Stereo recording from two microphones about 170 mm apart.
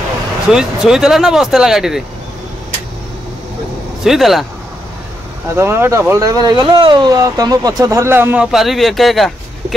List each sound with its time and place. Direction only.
0.5 s speech: 5° right (ahead or behind)
4.0 s speech: centre (ahead or behind)
5.5 s speech: 15° right (ahead or behind)